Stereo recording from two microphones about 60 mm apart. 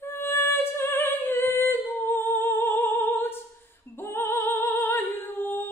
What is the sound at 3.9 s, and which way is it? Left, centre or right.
Female singing, left.